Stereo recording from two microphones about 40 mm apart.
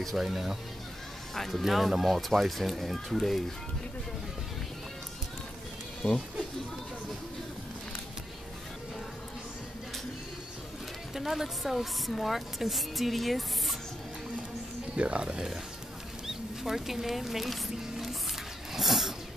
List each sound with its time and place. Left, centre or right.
0.2 s speech: centre
1.3 s speech: centre
1.6 s speech: centre
11.1 s speech: centre
15.0 s speech: right
16.3 s speech: centre
18.7 s vehicle: centre